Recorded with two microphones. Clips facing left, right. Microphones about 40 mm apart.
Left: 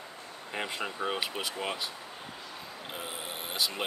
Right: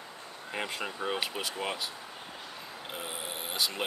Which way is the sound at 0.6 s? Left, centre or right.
Centre.